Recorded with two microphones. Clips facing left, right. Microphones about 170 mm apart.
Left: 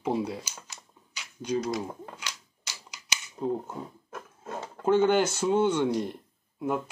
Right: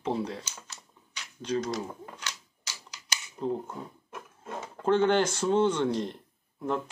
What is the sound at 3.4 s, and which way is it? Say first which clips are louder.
Speech: left 1 dB; 5° left (ahead or behind).